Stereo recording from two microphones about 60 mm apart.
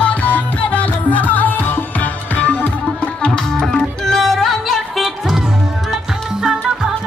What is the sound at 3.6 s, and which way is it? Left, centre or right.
Music, centre.